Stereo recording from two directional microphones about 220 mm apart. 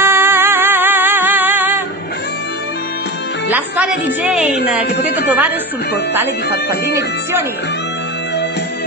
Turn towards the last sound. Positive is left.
turn(degrees=-10)  # may be behind; listen again after turning